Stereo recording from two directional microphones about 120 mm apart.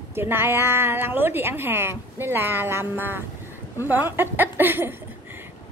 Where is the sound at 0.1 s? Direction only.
20° right (ahead or behind).